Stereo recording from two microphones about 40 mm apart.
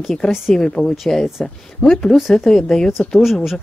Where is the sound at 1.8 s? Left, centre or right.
Left.